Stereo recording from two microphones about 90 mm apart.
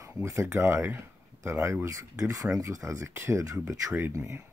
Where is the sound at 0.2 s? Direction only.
30° right (ahead or behind).